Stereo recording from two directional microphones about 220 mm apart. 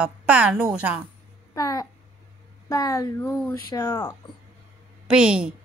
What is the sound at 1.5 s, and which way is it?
A child's voice, 15° left (ahead or behind).